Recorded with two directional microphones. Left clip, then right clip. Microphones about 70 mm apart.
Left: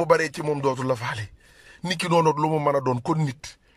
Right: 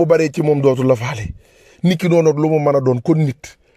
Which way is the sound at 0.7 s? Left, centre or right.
Right.